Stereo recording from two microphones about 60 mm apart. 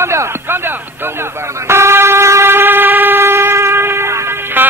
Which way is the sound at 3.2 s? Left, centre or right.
Right.